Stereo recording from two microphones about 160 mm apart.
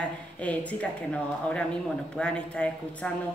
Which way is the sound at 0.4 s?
10° left (ahead or behind).